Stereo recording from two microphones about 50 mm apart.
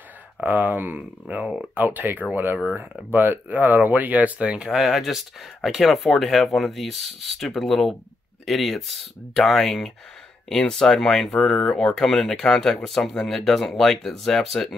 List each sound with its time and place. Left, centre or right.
0.4 s speech: right
4.4 s speech: right
4.6 s speech: centre
10.7 s speech: centre